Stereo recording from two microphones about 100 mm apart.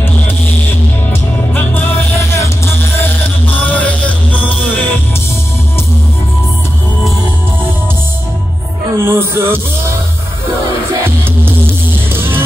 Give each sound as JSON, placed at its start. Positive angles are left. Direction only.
{"t": 1.5, "sound": "music", "side_deg": 15}
{"t": 2.3, "sound": "music", "side_deg": 30}
{"t": 3.6, "sound": "music", "side_deg": 15}
{"t": 8.9, "sound": "music", "side_deg": -25}
{"t": 11.4, "sound": "music", "side_deg": -20}